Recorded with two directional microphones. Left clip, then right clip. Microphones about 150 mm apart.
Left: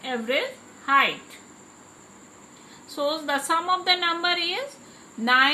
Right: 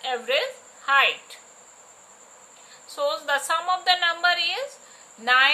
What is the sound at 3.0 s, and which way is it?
A woman's voice, 10° right (ahead or behind).